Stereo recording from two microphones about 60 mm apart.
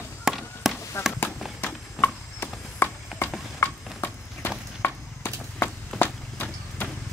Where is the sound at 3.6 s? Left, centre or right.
Left.